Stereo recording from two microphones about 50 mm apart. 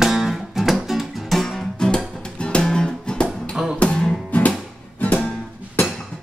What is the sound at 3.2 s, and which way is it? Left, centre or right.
Music, centre.